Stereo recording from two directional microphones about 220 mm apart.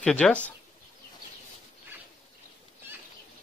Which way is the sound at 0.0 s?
5° left (ahead or behind).